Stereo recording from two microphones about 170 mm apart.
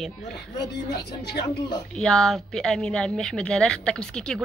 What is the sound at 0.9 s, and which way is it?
Speech, 70° left (ahead or behind).